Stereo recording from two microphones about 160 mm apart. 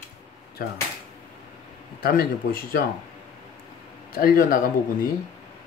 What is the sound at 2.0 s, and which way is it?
Speech, 65° left (ahead or behind).